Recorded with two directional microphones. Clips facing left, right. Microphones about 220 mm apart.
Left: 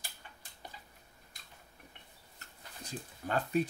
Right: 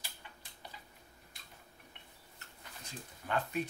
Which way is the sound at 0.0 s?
45° left (ahead or behind).